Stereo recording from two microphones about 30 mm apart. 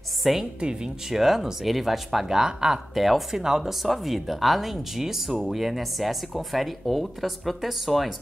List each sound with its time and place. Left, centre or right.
0.2 s a woman's voice: centre
2.2 s speech: centre
2.9 s speech: centre
3.3 s speech: centre
3.8 s speech: centre